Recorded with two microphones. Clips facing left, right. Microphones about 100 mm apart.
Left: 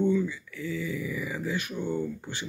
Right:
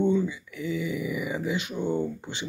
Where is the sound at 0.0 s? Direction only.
20° right (ahead or behind).